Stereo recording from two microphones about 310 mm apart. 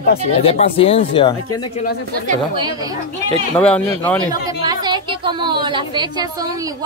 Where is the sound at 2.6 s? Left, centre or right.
Centre.